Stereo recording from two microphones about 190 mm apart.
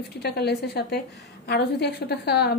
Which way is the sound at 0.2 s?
60° left (ahead or behind).